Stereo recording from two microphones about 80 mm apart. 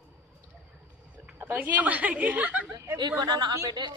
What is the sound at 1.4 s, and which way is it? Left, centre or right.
A woman's voice, right.